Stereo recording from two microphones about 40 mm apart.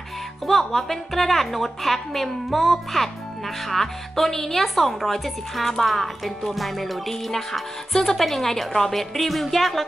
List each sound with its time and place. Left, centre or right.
0.5 s a woman's voice: centre